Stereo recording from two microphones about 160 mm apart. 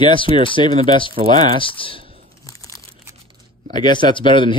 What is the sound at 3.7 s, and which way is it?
Speech, 30° left (ahead or behind).